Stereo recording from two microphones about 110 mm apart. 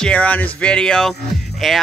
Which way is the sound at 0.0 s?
10° left (ahead or behind).